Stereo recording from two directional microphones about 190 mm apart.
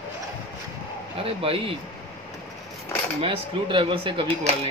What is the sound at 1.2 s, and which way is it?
Speech, 30° right (ahead or behind).